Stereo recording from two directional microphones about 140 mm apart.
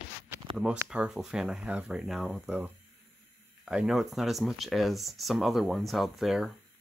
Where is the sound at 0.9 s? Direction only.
5° right (ahead or behind).